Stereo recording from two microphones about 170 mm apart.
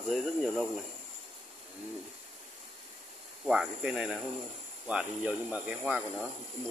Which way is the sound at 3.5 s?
5° right (ahead or behind).